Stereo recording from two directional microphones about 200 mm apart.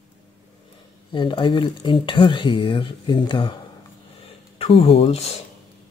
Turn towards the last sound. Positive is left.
turn(degrees=30)  # may be behind; listen again after turning